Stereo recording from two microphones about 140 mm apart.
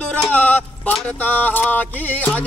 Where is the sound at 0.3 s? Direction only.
10° left (ahead or behind).